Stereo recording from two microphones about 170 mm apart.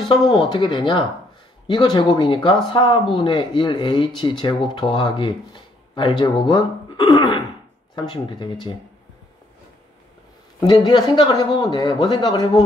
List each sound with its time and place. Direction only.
0.1 s speech: 25° left (ahead or behind)
10.9 s speech: 25° left (ahead or behind)